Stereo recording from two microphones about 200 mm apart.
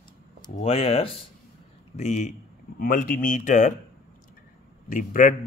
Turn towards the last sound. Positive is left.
turn(degrees=40)  # may be behind; listen again after turning